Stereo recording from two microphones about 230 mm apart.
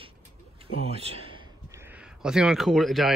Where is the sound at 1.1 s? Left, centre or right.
Right.